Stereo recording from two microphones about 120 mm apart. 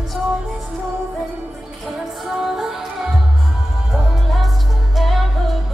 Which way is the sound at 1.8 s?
Centre (ahead or behind).